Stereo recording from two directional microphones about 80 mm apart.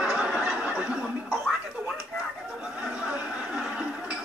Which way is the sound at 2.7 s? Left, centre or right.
Centre.